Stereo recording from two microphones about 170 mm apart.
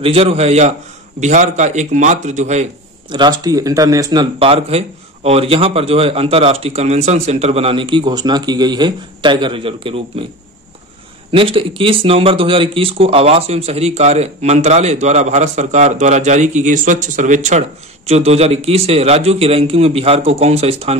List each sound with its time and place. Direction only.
0.0 s a man's voice: 35° right (ahead or behind)
3.1 s speech: 25° right (ahead or behind)
11.3 s speech: 30° right (ahead or behind)